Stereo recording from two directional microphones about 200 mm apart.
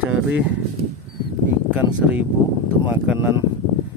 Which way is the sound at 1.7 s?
5° right (ahead or behind).